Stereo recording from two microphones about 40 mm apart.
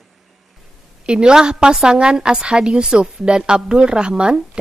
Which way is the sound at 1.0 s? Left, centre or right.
Right.